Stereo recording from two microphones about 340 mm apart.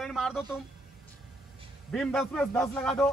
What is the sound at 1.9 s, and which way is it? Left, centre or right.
Speech, centre.